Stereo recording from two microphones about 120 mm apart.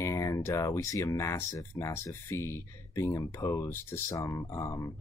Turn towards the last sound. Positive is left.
turn(degrees=25)  # may be behind; listen again after turning